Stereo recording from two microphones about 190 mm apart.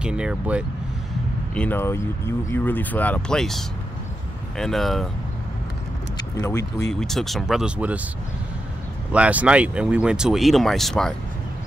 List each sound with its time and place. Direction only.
0.0 s speech: 5° right (ahead or behind)
1.5 s speech: 10° left (ahead or behind)
6.1 s speech: 15° left (ahead or behind)
6.9 s speech: centre (ahead or behind)
9.1 s speech: 5° right (ahead or behind)